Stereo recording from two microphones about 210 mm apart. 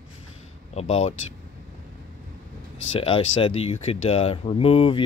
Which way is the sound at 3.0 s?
25° left (ahead or behind).